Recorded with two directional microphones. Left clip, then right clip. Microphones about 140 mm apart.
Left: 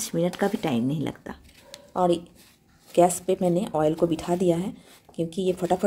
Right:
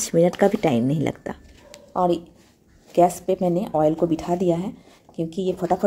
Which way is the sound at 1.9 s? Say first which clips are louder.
Right 2 dB; centre (ahead or behind).